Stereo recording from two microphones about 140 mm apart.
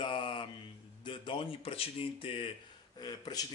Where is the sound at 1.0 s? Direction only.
35° left (ahead or behind).